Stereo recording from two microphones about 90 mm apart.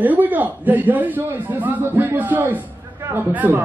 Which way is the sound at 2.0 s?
20° right (ahead or behind).